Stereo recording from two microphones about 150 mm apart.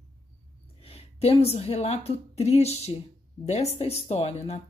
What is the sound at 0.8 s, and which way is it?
A woman's voice, 40° left (ahead or behind).